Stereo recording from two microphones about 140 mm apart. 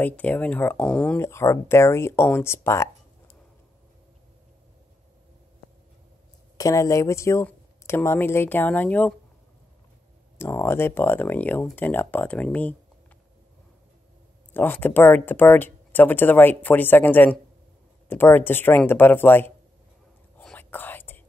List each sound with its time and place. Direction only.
0.0 s speech: 10° left (ahead or behind)
6.6 s speech: 25° left (ahead or behind)
10.3 s speech: 15° left (ahead or behind)
14.5 s speech: 15° left (ahead or behind)
20.3 s whispering: 10° left (ahead or behind)